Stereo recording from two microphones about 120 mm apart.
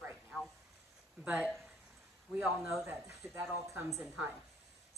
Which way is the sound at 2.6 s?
15° right (ahead or behind).